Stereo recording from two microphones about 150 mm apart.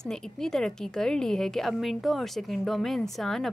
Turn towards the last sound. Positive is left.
turn(degrees=0)  # may be behind; listen again after turning